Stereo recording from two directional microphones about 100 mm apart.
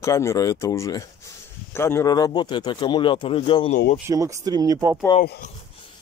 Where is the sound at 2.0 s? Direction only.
40° left (ahead or behind); by 3.5 s 65° left (ahead or behind).